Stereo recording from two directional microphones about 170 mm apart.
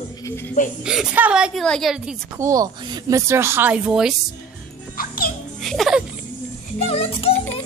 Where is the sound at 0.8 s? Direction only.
5° right (ahead or behind).